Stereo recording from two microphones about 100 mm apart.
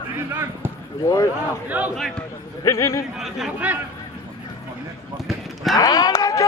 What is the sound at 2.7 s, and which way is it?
Speech, 30° left (ahead or behind).